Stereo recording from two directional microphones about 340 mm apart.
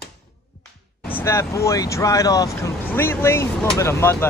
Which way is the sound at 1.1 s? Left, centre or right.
Centre.